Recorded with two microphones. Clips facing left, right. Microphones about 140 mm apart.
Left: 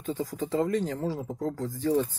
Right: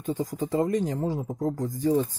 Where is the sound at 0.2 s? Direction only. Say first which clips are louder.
Right 1 dB; 15° right (ahead or behind).